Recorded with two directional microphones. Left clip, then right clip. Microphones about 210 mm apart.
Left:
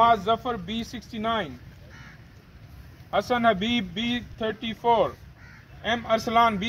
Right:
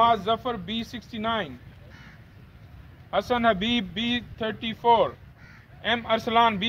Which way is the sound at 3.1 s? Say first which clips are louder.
Left 1 dB; 5° right (ahead or behind).